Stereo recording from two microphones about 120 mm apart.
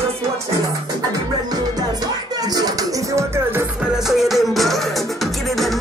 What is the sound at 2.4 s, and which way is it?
Music, 30° right (ahead or behind).